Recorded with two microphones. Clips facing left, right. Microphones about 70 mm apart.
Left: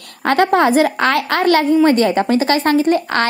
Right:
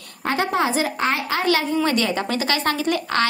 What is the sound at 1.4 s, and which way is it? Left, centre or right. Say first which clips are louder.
Speech: left 9 dB; left.